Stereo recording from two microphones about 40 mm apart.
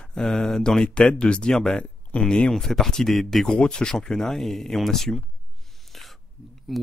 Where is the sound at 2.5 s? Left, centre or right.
Centre.